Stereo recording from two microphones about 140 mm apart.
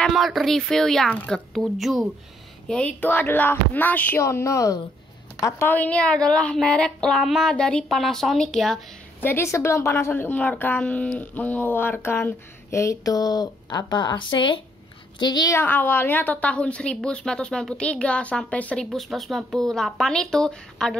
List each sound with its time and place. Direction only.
0.0 s speech: centre (ahead or behind)
2.7 s a woman's voice: 10° left (ahead or behind)
9.2 s a woman's voice: 15° left (ahead or behind)
15.5 s a woman's voice: 15° left (ahead or behind)